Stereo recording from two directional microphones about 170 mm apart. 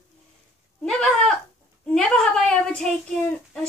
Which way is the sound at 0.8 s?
5° left (ahead or behind).